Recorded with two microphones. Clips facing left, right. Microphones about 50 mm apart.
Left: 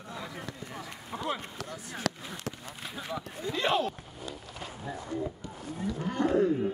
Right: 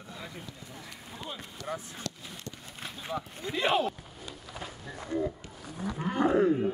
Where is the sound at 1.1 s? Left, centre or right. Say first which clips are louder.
Left 8 dB; left.